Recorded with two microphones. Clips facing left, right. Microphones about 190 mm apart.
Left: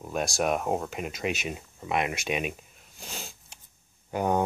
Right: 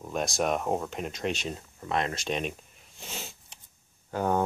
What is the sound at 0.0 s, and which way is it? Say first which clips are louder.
Speech: left 1 dB; centre (ahead or behind).